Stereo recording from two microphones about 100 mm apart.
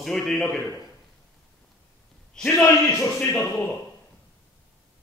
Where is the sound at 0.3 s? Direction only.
30° left (ahead or behind).